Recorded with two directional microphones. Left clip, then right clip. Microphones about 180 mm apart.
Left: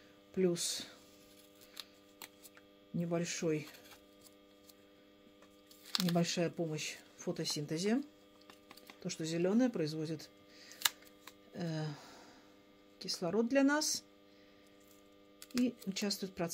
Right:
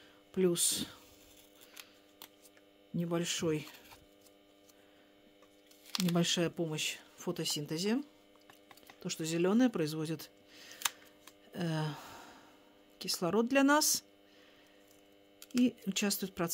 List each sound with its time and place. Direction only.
0.3 s speech: 40° right (ahead or behind)
3.0 s speech: 40° right (ahead or behind)
5.9 s a sound: 15° right (ahead or behind)
6.1 s speech: 40° right (ahead or behind)
9.0 s speech: 40° right (ahead or behind)
11.5 s a sound: 45° right (ahead or behind)
13.0 s speech: 45° right (ahead or behind)
16.0 s speech: 45° right (ahead or behind)